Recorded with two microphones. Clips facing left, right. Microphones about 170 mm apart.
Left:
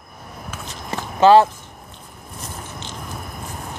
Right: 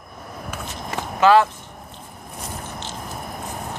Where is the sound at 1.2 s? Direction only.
30° left (ahead or behind).